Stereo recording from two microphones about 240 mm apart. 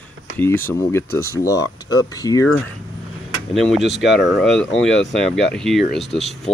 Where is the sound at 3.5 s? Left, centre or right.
Centre.